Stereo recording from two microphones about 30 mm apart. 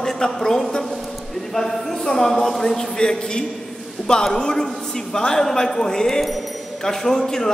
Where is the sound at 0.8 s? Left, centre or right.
Centre.